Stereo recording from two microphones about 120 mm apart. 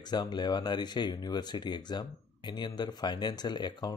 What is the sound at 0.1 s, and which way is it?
Speech, 35° left (ahead or behind).